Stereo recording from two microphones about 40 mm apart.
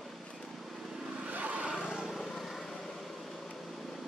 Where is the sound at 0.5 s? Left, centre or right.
Centre.